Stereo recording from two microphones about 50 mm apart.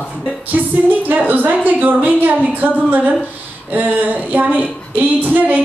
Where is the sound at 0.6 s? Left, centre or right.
Right.